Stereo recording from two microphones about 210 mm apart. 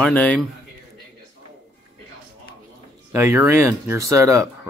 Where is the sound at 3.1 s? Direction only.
10° right (ahead or behind).